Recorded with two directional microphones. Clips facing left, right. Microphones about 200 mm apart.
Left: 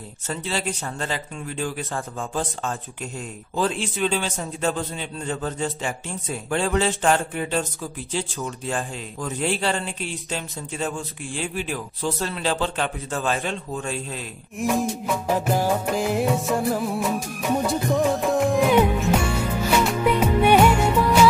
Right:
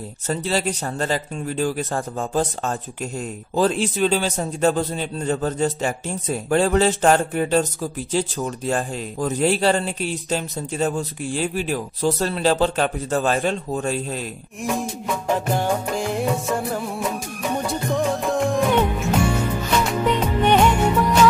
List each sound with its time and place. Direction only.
0.3 s a man's voice: 40° right (ahead or behind)
14.6 s music: centre (ahead or behind)